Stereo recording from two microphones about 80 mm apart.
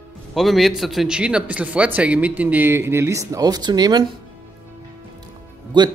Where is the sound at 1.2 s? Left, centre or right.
Centre; by 4.0 s right.